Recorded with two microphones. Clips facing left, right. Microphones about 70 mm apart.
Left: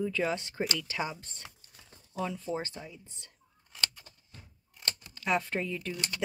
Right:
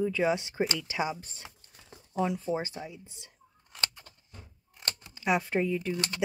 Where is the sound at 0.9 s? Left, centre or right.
Centre.